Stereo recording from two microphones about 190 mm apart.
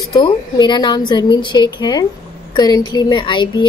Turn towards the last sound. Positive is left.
turn(degrees=25)  # may be behind; listen again after turning